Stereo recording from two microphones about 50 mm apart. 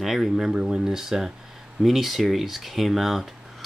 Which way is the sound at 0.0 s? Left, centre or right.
Centre.